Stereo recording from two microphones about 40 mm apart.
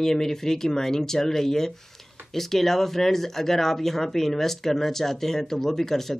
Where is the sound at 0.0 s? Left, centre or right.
Centre.